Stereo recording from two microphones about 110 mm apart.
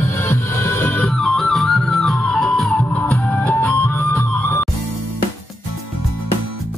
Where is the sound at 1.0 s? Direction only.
5° left (ahead or behind); by 4.6 s 20° left (ahead or behind).